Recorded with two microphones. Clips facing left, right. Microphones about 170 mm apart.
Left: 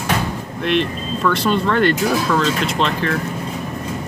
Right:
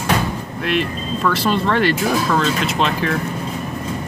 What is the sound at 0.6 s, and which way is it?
Speech, 5° right (ahead or behind).